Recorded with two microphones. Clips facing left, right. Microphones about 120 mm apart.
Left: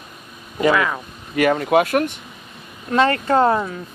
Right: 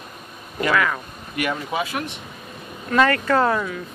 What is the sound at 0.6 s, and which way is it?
Speech, 20° left (ahead or behind).